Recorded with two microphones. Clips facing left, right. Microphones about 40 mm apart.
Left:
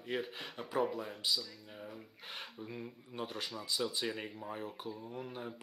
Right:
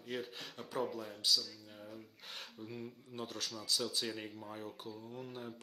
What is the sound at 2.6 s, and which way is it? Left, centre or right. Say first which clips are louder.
Speech: left 1 dB; centre.